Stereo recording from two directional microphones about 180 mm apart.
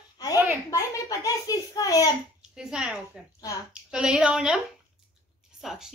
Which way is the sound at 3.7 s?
5° right (ahead or behind).